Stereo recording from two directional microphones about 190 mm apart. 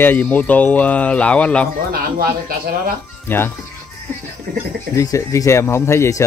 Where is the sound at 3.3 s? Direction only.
10° left (ahead or behind).